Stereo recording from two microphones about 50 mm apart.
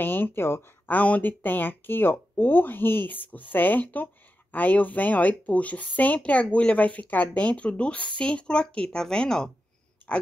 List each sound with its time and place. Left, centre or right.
0.0 s speech: left
0.8 s speech: left; by 9.5 s centre
10.1 s speech: left